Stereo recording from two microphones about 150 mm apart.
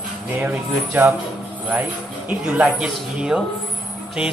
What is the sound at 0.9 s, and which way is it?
Speech, 15° right (ahead or behind).